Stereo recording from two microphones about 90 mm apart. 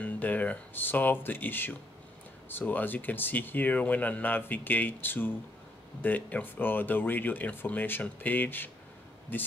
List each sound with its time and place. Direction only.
0.0 s speech: 20° left (ahead or behind)